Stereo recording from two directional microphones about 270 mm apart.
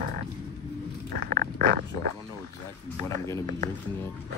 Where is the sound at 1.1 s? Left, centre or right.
Right.